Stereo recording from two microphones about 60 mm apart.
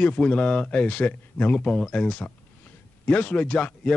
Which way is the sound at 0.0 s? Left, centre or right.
Centre.